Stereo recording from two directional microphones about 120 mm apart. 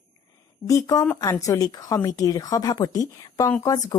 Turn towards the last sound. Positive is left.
turn(degrees=30)  # may be behind; listen again after turning